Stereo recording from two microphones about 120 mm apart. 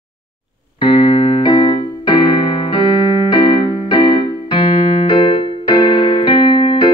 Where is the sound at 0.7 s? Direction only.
40° left (ahead or behind).